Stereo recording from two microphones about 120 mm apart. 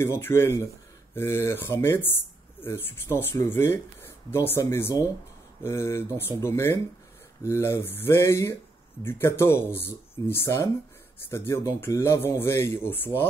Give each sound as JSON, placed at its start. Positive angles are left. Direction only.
{"t": 0.0, "sound": "speech", "side_deg": 20}